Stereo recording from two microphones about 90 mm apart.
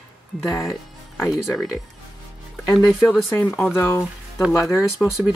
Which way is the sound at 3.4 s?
25° left (ahead or behind).